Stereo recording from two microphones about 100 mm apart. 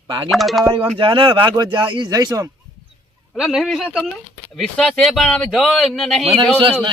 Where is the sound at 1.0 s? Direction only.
60° right (ahead or behind).